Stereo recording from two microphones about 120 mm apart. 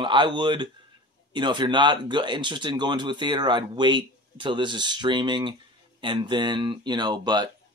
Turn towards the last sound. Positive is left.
turn(degrees=-35)  # may be behind; listen again after turning